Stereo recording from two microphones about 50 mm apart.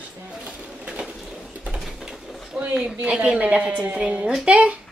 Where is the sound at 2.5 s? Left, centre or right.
Right.